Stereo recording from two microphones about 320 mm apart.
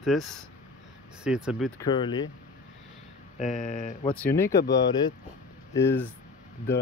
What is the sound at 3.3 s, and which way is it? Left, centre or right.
Speech, left.